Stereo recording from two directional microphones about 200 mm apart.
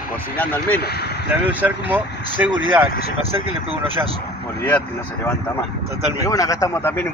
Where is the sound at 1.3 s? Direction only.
10° right (ahead or behind).